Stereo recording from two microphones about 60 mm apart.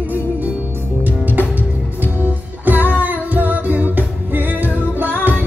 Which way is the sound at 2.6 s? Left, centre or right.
Right.